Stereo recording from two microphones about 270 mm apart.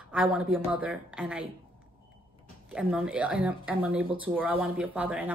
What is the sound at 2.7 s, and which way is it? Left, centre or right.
Speech, centre.